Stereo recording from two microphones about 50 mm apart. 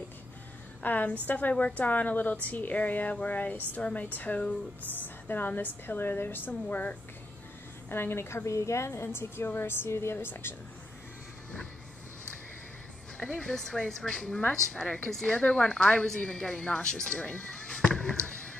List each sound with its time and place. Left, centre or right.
0.8 s a woman's voice: left
4.9 s a woman's voice: left
7.9 s a woman's voice: left
8.5 s a woman's voice: left
13.4 s a woman's voice: centre; by 17.7 s left